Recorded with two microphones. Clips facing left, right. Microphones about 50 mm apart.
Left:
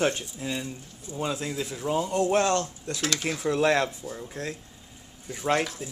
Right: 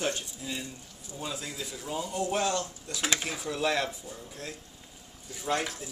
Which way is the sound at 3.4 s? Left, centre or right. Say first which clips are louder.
Left 7 dB; left.